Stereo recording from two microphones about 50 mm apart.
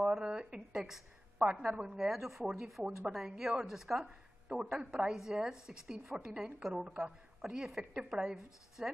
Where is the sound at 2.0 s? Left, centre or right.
Centre.